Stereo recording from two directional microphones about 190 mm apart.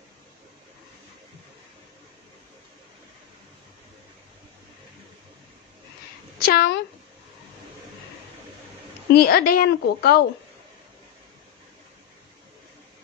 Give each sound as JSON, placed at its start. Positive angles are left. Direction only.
{"t": 6.4, "sound": "speech", "side_deg": 55}
{"t": 9.1, "sound": "a woman's voice", "side_deg": 55}